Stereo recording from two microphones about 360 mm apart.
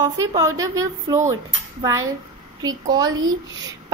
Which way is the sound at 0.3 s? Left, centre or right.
Centre.